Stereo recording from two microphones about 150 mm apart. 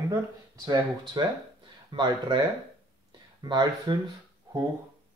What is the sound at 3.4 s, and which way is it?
Speech, 30° right (ahead or behind).